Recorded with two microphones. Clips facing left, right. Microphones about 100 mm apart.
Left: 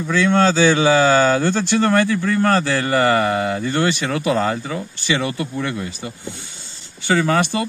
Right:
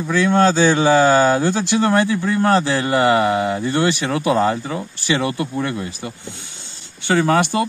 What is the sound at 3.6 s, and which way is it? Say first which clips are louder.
Speech: right 1 dB; 30° right (ahead or behind).